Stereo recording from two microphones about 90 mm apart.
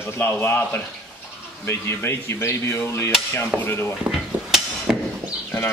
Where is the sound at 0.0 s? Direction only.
25° left (ahead or behind).